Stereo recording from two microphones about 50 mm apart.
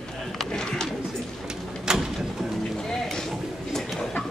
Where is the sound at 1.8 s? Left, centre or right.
Centre.